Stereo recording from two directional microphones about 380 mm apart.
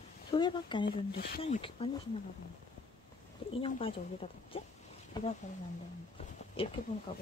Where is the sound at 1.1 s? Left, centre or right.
Left.